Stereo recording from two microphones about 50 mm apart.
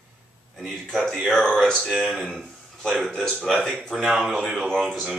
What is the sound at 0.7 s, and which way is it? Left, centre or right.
Speech, centre.